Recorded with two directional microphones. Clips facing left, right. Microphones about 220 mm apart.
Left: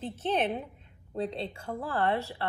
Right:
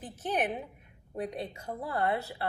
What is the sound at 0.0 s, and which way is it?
Speech, 25° left (ahead or behind).